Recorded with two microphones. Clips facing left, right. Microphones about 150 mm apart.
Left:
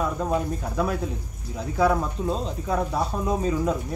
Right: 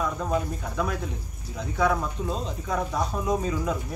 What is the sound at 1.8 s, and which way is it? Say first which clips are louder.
Speech: left 3 dB; 35° left (ahead or behind).